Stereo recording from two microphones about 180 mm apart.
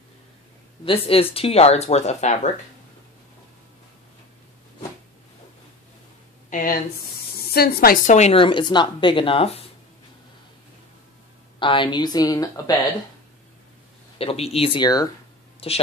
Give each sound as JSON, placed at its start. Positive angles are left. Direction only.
{"t": 0.8, "sound": "speech", "side_deg": 30}
{"t": 6.5, "sound": "speech", "side_deg": 50}
{"t": 8.1, "sound": "speech", "side_deg": 35}
{"t": 11.6, "sound": "speech", "side_deg": 25}
{"t": 14.1, "sound": "speech", "side_deg": 35}